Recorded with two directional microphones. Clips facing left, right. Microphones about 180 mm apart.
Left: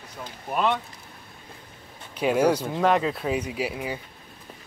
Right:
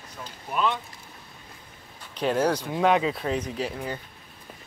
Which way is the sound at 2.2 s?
10° left (ahead or behind).